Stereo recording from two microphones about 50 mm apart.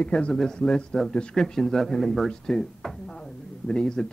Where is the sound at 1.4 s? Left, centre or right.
Centre.